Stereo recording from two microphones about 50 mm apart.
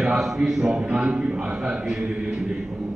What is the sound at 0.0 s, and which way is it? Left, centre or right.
A man's voice, centre.